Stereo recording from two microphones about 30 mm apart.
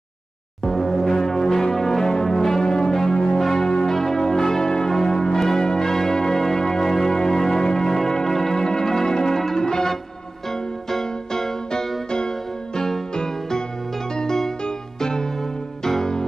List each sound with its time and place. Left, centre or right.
0.7 s music: centre
3.3 s change ringing: centre
3.6 s church bell: left
5.7 s organ: centre
7.9 s music: centre
13.1 s music: left
15.0 s music: left